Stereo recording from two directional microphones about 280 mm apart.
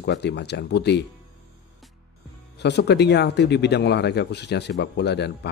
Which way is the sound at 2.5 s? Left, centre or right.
Left.